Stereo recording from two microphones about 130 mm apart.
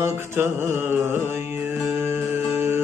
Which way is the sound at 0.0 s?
20° right (ahead or behind).